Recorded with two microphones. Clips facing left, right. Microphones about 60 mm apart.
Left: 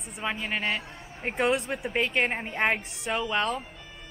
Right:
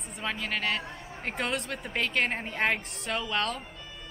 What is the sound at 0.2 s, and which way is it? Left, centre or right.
A woman's voice, centre.